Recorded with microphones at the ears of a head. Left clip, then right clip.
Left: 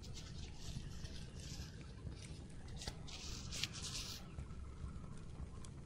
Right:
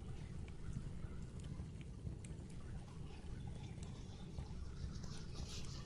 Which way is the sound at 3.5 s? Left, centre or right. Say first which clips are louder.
Left 12 dB; left.